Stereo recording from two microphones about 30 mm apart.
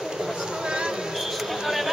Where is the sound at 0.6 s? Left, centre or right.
Right.